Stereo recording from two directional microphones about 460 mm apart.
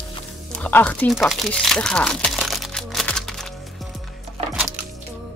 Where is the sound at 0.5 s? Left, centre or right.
Centre.